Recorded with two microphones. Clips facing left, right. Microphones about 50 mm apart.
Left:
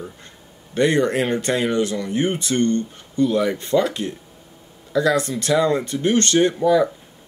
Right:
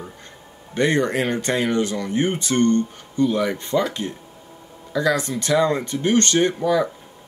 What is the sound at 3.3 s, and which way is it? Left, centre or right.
Speech, right.